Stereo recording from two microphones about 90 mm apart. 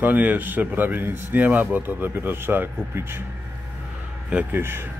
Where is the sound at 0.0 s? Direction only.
20° right (ahead or behind).